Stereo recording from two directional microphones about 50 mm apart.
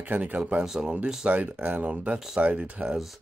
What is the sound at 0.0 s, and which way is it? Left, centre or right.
Speech, right.